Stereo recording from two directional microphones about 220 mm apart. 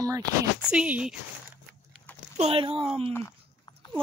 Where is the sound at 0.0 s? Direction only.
15° right (ahead or behind).